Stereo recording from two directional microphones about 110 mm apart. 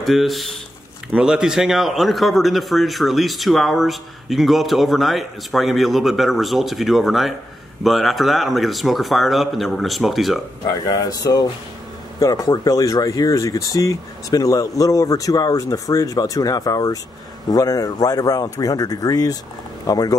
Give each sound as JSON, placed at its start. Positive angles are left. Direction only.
{"t": 0.0, "sound": "a man's voice", "side_deg": 0}
{"t": 10.9, "sound": "speech", "side_deg": 35}